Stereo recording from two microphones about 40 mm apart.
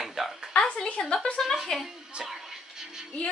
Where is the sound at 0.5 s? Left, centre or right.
Left.